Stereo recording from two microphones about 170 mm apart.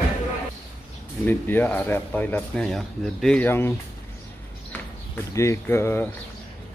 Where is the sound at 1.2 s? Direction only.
10° left (ahead or behind).